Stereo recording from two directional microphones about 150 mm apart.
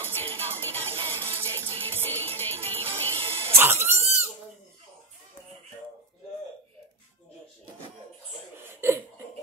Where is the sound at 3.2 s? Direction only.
40° right (ahead or behind).